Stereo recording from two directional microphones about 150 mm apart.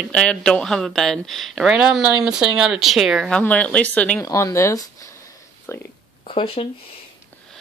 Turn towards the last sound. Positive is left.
turn(degrees=40)  # may be behind; listen again after turning